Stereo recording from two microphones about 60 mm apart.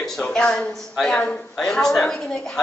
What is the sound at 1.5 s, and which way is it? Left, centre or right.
A man's voice, centre.